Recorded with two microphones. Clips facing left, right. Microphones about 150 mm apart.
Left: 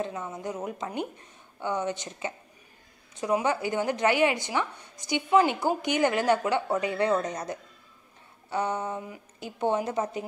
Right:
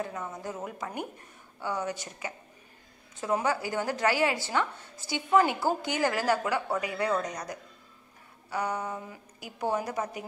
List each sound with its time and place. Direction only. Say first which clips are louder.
0.0 s a woman's voice: left 2 dB; 20° left (ahead or behind)